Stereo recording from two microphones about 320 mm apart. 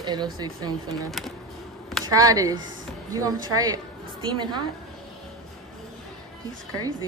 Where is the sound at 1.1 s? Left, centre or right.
Centre.